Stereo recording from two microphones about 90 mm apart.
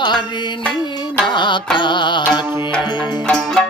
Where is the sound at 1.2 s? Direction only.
60° left (ahead or behind).